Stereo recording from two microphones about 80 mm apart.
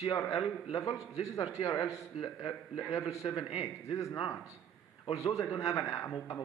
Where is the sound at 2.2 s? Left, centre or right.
Left.